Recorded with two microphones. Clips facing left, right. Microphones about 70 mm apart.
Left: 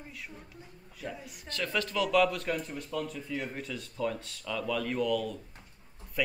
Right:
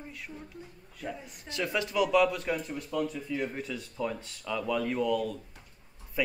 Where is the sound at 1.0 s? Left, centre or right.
Centre.